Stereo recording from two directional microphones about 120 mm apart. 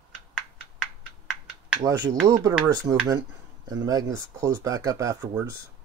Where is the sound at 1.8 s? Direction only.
30° right (ahead or behind).